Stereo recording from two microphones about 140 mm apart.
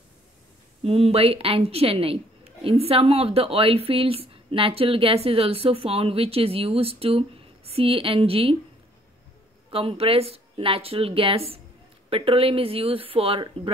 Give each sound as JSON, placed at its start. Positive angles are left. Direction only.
{"t": 0.8, "sound": "speech", "side_deg": -45}
{"t": 9.7, "sound": "speech", "side_deg": -40}